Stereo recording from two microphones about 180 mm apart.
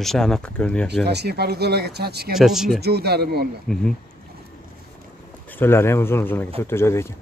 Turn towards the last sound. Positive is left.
turn(degrees=15)  # may be behind; listen again after turning